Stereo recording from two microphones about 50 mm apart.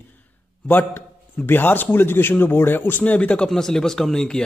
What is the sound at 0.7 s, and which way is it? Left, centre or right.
A man's voice, left.